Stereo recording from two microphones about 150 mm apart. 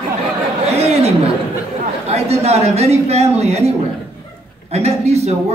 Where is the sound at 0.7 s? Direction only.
45° right (ahead or behind).